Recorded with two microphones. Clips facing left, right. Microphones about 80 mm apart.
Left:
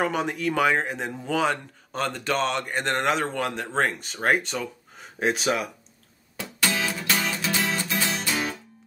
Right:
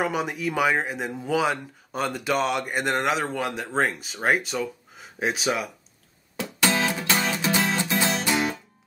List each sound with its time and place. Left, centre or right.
0.0 s speech: centre
6.3 s music: right